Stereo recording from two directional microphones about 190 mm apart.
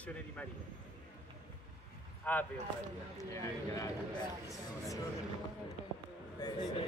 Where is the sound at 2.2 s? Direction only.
10° left (ahead or behind).